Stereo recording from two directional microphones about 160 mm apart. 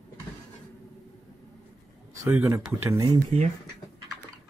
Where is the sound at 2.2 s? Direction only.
10° right (ahead or behind).